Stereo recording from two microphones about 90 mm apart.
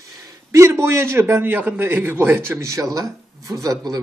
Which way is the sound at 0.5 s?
30° right (ahead or behind).